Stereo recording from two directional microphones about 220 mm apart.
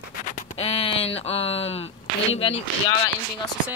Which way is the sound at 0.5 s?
25° left (ahead or behind).